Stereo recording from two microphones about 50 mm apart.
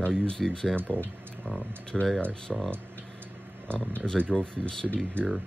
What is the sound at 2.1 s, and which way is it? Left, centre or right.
Speech, left.